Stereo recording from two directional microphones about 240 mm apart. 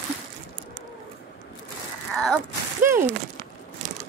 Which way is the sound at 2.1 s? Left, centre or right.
Centre.